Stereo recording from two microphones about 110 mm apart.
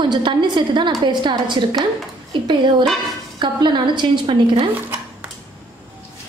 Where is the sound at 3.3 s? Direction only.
45° right (ahead or behind).